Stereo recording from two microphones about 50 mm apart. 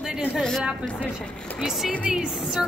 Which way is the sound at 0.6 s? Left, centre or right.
Right.